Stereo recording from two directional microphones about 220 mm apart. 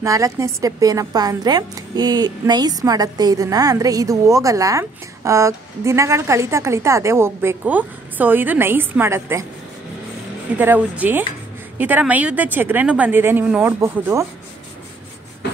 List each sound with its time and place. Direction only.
0.0 s a woman's voice: 15° right (ahead or behind)
10.6 s a woman's voice: 10° right (ahead or behind)